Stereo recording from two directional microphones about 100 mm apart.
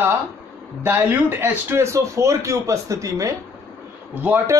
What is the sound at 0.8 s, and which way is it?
Speech, 20° right (ahead or behind).